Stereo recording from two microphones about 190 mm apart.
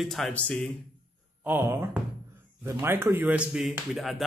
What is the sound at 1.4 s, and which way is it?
Speech, 10° right (ahead or behind).